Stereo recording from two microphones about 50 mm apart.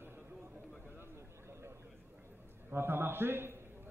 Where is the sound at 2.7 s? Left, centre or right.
Right.